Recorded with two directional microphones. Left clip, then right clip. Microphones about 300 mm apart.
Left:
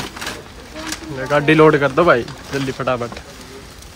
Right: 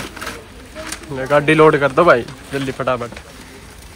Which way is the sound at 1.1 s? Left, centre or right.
Centre.